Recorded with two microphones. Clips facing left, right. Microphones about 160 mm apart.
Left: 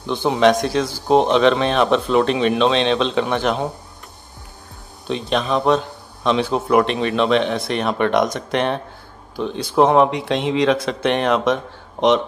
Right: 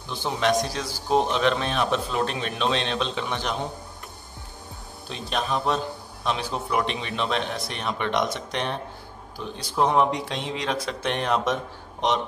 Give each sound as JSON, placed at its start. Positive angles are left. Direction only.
{"t": 0.0, "sound": "a man's voice", "side_deg": 70}
{"t": 5.1, "sound": "speech", "side_deg": 90}
{"t": 6.5, "sound": "speech", "side_deg": 65}